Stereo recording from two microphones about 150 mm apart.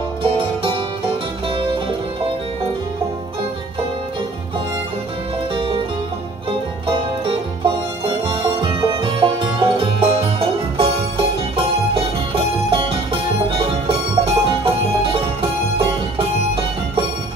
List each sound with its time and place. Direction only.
0.2 s music: 35° right (ahead or behind)
5.5 s music: 35° right (ahead or behind)
6.9 s music: 35° right (ahead or behind)